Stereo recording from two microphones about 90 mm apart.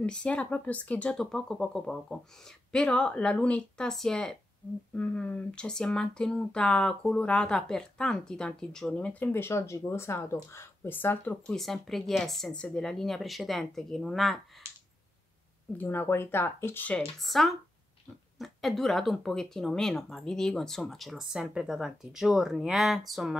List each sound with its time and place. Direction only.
0.0 s speech: 10° left (ahead or behind)
1.1 s speech: 5° left (ahead or behind); by 11.3 s 20° left (ahead or behind)
11.4 s speech: 5° left (ahead or behind)
15.8 s speech: 25° left (ahead or behind)
17.2 s speech: centre (ahead or behind)